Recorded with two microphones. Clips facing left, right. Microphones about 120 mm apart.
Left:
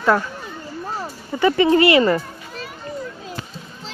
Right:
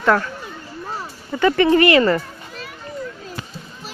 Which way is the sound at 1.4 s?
20° left (ahead or behind).